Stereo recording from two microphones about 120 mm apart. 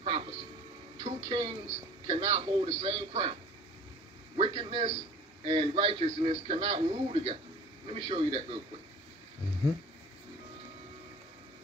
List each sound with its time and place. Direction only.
0.0 s a sound: 45° right (ahead or behind)
1.0 s a man's voice: 40° right (ahead or behind)
4.4 s a man's voice: 45° right (ahead or behind)